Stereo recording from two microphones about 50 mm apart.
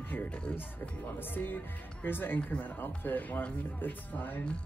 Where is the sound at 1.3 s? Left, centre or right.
Left.